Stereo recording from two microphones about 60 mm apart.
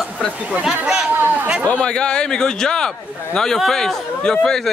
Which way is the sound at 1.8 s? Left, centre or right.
Centre.